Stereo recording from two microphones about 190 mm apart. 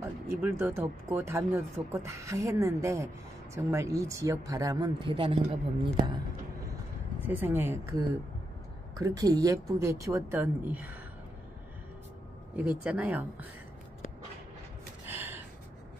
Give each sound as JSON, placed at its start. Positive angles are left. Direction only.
{"t": 0.0, "sound": "speech", "side_deg": -15}
{"t": 7.2, "sound": "speech", "side_deg": -10}
{"t": 8.9, "sound": "speech", "side_deg": -15}
{"t": 12.5, "sound": "speech", "side_deg": -10}
{"t": 15.0, "sound": "gasp", "side_deg": -10}